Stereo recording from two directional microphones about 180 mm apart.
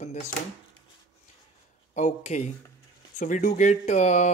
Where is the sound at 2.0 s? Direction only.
40° left (ahead or behind).